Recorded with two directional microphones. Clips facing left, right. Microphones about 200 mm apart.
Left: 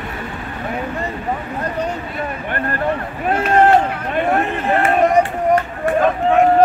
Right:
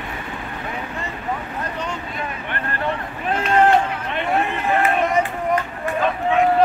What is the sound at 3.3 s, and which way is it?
Run, 45° left (ahead or behind).